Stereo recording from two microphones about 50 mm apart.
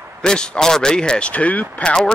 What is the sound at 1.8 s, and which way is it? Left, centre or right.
Speech, centre.